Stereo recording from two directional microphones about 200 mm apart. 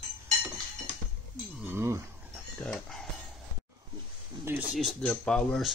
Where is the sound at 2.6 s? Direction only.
Centre (ahead or behind).